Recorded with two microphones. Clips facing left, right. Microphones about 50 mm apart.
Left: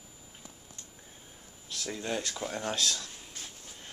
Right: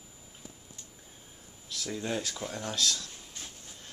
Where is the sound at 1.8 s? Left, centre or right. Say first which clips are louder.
Right 1 dB; centre.